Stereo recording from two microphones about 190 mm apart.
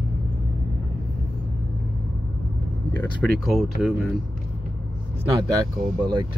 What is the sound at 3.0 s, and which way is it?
Speech, 5° left (ahead or behind).